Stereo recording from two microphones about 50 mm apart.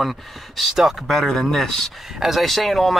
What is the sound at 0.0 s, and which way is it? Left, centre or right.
Speech, centre.